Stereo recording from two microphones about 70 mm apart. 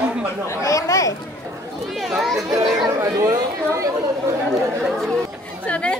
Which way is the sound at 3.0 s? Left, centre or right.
Right.